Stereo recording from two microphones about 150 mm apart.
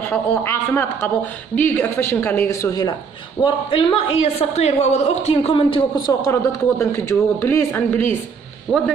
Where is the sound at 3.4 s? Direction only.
35° left (ahead or behind).